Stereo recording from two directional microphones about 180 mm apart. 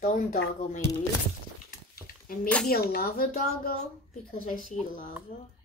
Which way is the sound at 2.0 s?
50° left (ahead or behind).